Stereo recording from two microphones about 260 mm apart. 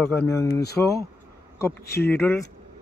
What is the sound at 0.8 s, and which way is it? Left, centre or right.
Speech, centre.